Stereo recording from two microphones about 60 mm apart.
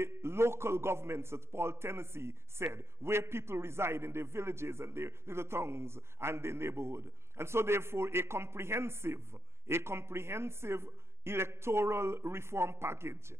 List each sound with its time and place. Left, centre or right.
0.0 s a man's voice: right